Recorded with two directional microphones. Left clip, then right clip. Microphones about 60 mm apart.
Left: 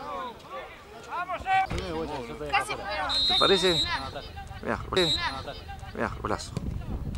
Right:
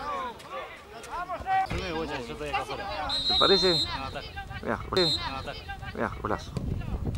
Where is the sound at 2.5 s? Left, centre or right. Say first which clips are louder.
Left 5 dB; left.